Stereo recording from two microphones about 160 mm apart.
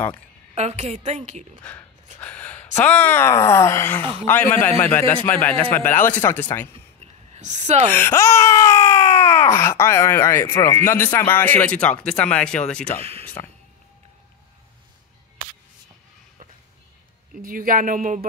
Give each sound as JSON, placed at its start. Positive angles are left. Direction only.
{"t": 0.6, "sound": "a woman's voice", "side_deg": -40}
{"t": 1.6, "sound": "speech", "side_deg": 10}
{"t": 6.7, "sound": "a sound", "side_deg": -40}
{"t": 7.9, "sound": "speech", "side_deg": 15}
{"t": 13.0, "sound": "speech", "side_deg": -40}
{"t": 17.4, "sound": "speech", "side_deg": -60}